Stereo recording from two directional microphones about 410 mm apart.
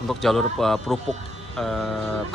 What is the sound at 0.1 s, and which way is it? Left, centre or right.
Speech, centre.